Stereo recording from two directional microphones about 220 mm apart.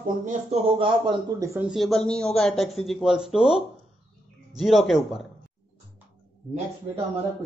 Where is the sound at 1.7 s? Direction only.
Centre (ahead or behind).